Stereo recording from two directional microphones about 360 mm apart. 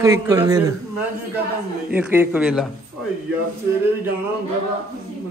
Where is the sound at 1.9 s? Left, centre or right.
Centre.